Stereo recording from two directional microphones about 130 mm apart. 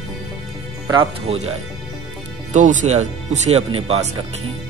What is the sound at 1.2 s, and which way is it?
Music, 55° right (ahead or behind).